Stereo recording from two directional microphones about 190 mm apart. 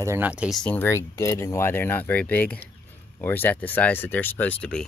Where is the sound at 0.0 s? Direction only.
10° right (ahead or behind); by 4.8 s 5° left (ahead or behind).